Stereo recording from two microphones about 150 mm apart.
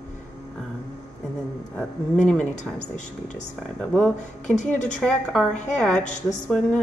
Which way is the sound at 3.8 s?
10° left (ahead or behind).